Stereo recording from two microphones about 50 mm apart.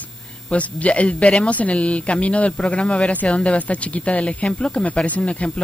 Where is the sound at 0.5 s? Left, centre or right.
Left.